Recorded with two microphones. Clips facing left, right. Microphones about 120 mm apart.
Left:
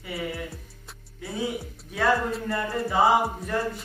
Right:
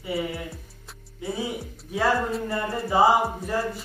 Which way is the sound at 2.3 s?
Centre (ahead or behind).